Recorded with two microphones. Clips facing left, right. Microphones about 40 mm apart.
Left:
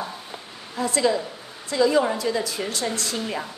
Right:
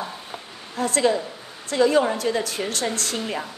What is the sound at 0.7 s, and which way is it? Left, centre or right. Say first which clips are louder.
Speech: right 1 dB; right.